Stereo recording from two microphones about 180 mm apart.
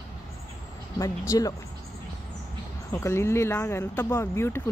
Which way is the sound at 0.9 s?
20° left (ahead or behind).